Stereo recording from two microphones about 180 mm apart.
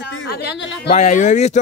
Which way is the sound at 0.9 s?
40° left (ahead or behind).